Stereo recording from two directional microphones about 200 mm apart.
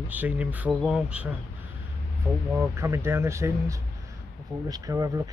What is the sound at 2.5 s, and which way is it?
Speech, 15° right (ahead or behind).